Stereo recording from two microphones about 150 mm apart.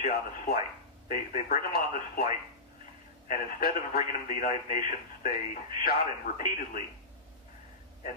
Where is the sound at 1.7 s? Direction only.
80° left.